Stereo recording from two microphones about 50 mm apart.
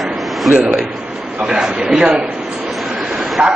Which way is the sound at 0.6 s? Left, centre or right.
Right.